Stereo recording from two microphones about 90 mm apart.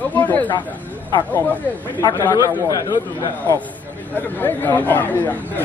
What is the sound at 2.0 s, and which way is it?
A man's voice, 45° left (ahead or behind).